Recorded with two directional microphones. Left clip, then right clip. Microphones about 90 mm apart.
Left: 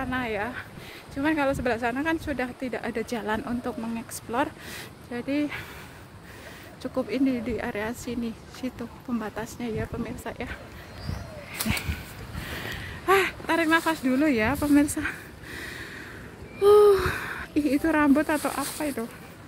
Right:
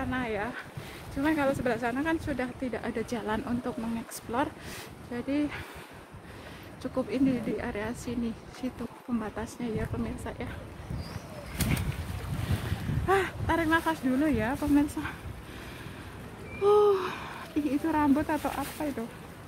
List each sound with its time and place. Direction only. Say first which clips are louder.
0.0 s speech: left 3 dB; 40° left (ahead or behind); by 4.8 s 20° left (ahead or behind)
5.1 s speech: left 3 dB; 30° left (ahead or behind)
6.8 s speech: left 2 dB; 30° left (ahead or behind)
7.2 s speech: left 2 dB; 45° left (ahead or behind)
8.2 s speech: left 2 dB; 25° left (ahead or behind)
13.0 s speech: left 5 dB; 25° left (ahead or behind)
16.6 s speech: left 6 dB; 45° left (ahead or behind); by 19.0 s 20° left (ahead or behind)